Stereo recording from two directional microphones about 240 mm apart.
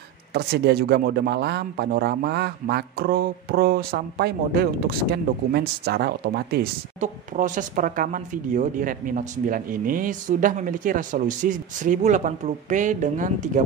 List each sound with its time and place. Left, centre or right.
0.3 s speech: right